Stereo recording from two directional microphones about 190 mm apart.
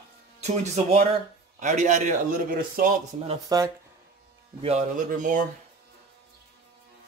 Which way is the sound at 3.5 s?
20° right (ahead or behind).